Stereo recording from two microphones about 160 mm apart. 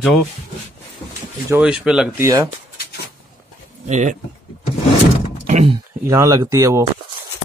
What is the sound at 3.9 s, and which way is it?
Speech, 50° right (ahead or behind).